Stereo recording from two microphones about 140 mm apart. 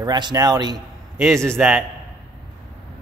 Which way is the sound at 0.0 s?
30° right (ahead or behind).